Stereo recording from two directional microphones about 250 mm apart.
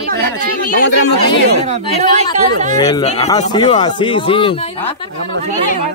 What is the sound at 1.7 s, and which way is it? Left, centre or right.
Speech, right.